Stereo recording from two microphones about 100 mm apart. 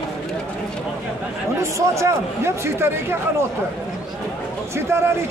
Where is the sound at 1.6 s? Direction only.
30° right (ahead or behind).